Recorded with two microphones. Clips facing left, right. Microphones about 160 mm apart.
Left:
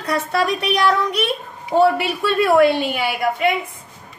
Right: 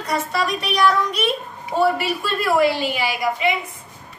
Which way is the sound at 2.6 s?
55° left (ahead or behind).